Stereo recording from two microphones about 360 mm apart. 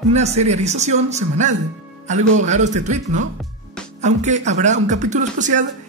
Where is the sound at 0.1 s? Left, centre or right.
Centre.